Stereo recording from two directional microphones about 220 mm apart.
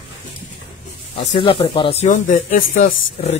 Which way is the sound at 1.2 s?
25° left (ahead or behind).